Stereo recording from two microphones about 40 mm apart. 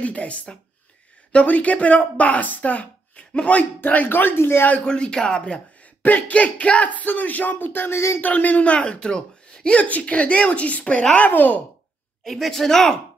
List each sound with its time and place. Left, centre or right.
0.0 s a woman's voice: left
3.8 s speech: left
4.8 s speech: left
6.0 s speech: left
8.2 s a woman's voice: left
9.8 s a woman's voice: left
11.2 s speech: left
12.3 s speech: centre